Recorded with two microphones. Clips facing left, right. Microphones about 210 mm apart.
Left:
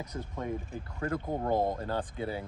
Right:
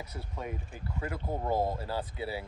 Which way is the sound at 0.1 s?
10° right (ahead or behind).